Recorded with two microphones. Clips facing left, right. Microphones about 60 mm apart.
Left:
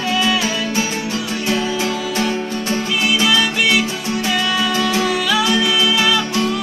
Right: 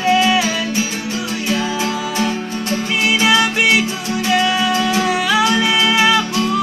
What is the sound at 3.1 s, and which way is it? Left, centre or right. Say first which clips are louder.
Music: right 3 dB; right.